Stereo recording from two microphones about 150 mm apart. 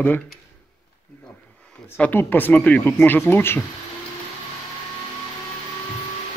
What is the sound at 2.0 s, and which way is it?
Speech, 15° left (ahead or behind).